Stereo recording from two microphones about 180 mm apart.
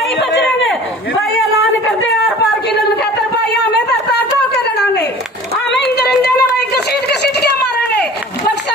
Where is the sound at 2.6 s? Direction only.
65° left (ahead or behind).